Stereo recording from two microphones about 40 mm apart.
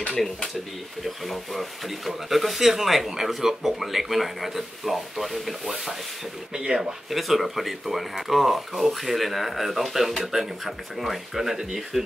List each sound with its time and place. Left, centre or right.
1.0 s speech: centre
6.5 s speech: centre
7.1 s speech: centre